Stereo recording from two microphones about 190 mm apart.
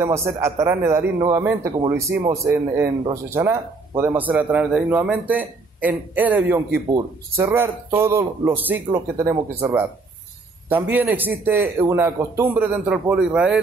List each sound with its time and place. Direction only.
0.0 s speech: 15° right (ahead or behind)